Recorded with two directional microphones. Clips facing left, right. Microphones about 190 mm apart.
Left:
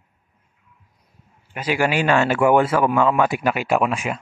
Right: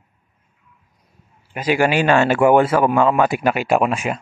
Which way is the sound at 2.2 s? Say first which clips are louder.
Right 2 dB; 35° right (ahead or behind).